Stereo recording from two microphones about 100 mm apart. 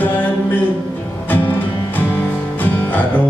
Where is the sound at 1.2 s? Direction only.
20° left (ahead or behind).